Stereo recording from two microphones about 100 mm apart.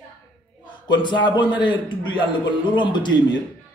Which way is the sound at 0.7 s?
50° left (ahead or behind).